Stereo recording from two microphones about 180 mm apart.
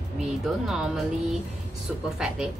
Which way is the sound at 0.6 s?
Centre (ahead or behind).